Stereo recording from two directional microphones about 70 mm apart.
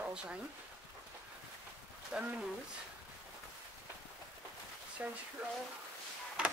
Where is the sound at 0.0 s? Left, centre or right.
Centre.